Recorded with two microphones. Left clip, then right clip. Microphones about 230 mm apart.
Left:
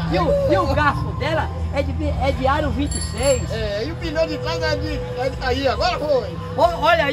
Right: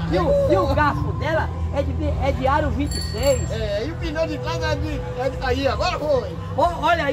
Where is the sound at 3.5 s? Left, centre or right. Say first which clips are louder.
Left 1 dB; centre.